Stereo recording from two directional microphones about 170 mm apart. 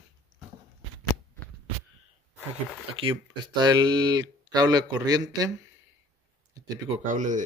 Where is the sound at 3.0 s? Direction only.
30° right (ahead or behind).